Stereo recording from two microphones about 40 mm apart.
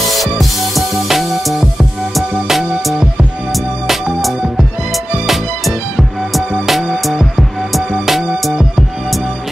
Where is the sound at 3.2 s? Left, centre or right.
Right.